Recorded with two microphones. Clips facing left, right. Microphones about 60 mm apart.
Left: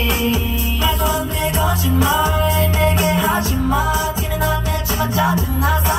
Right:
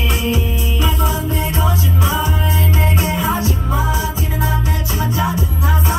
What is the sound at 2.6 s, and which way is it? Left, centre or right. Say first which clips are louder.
Music: left 2 dB; right.